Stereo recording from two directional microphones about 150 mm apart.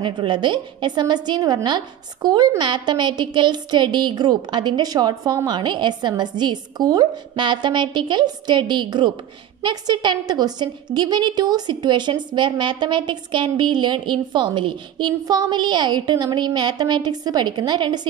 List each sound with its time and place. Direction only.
0.0 s a woman's voice: 30° right (ahead or behind)